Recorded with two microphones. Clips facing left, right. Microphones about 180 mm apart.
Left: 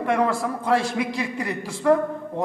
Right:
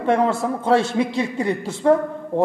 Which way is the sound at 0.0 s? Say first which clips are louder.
Right 3 dB; 30° right (ahead or behind).